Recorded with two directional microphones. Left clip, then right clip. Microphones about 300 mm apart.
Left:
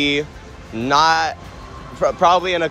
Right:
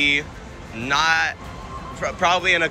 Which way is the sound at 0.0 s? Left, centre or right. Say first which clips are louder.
Even; centre.